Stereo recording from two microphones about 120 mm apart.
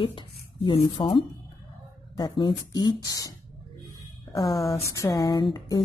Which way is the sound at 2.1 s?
35° left (ahead or behind).